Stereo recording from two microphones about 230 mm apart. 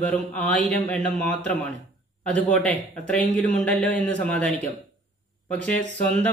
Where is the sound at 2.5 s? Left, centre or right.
Centre.